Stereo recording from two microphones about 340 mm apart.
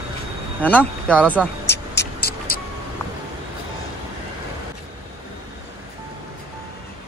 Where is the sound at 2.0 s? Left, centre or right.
Left.